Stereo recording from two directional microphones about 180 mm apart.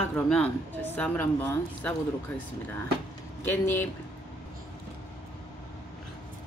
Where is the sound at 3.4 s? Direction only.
15° left (ahead or behind).